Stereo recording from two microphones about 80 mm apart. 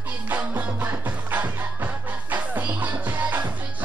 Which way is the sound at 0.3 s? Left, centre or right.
Right.